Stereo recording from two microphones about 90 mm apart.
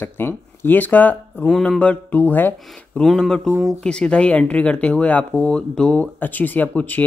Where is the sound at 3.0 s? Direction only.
5° left (ahead or behind).